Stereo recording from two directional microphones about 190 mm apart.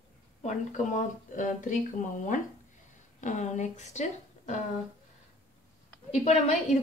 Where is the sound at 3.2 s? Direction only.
40° left (ahead or behind).